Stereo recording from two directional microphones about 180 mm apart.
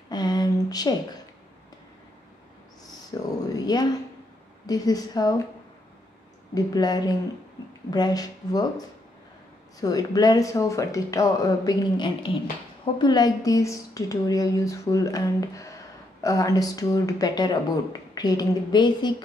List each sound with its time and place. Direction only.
0.1 s a sound: 20° left (ahead or behind)
3.1 s a woman's voice: 20° left (ahead or behind)
6.5 s speech: 20° left (ahead or behind)